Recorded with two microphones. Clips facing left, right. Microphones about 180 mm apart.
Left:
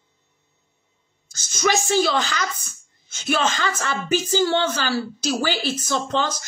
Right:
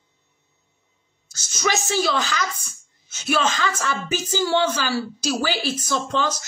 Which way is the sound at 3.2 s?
50° left (ahead or behind).